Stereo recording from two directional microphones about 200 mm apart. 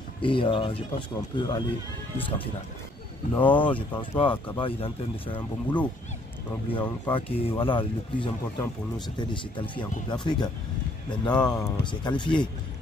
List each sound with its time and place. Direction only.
0.2 s speech: 25° left (ahead or behind)
3.5 s speech: 25° left (ahead or behind)